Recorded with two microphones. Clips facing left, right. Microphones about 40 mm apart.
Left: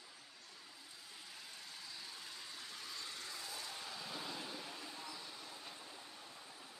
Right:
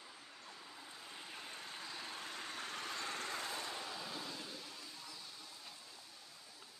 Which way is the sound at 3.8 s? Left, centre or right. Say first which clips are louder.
Right 3 dB; centre.